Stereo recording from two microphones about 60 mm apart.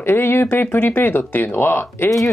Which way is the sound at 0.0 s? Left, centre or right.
Left.